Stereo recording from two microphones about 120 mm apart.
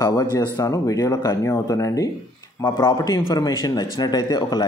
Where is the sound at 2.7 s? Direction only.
40° left (ahead or behind).